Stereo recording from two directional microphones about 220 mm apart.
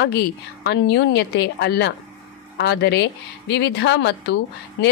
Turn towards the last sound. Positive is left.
turn(degrees=50)  # may be behind; listen again after turning